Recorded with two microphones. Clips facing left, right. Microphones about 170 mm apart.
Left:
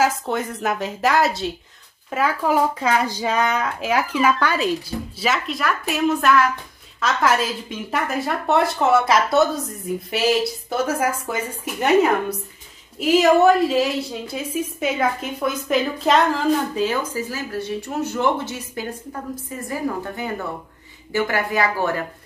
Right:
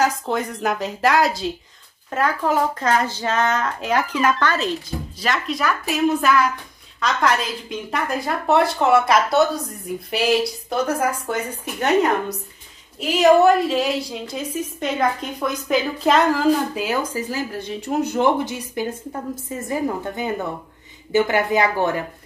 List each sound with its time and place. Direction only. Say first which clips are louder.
0.0 s a woman's voice: even; centre (ahead or behind)
13.0 s a woman's voice: even; centre (ahead or behind); by 22.0 s 20° right (ahead or behind)